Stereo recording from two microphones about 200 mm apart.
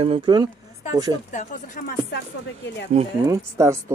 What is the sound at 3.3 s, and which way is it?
Speech, 15° right (ahead or behind).